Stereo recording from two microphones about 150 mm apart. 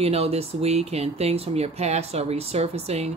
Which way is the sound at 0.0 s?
40° right (ahead or behind).